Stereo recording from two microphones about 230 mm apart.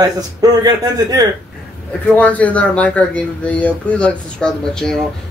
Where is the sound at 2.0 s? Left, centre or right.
Centre.